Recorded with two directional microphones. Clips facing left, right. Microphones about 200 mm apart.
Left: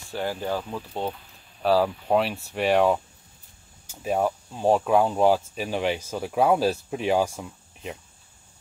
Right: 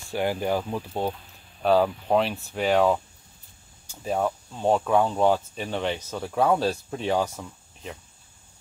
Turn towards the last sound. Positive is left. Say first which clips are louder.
# left 2 dB
turn(degrees=10)  # may be behind; listen again after turning